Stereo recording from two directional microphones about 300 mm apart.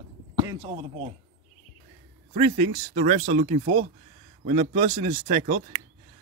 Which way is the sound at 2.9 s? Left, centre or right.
Right.